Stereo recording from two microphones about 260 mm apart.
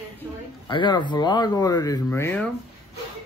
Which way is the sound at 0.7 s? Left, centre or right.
Centre.